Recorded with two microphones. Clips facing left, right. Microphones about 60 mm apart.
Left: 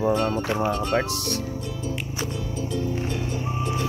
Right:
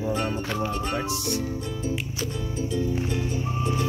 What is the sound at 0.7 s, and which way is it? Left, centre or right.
Speech, left.